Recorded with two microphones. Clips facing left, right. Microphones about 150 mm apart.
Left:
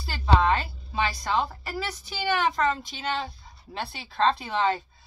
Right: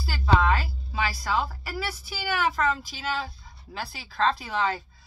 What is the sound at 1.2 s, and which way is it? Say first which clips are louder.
Speech: left 1 dB; 5° right (ahead or behind).